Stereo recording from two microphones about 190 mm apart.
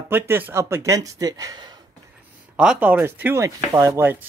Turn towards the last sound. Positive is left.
turn(degrees=-10)  # may be behind; listen again after turning